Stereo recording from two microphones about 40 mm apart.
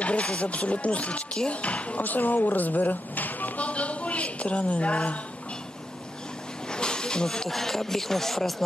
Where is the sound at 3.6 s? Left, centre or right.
Left.